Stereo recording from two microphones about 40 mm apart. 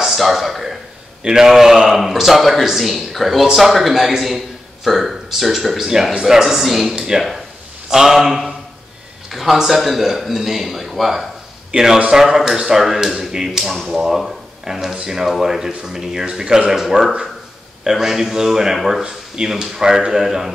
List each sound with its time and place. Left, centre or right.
0.0 s speech: centre
1.2 s a man's voice: centre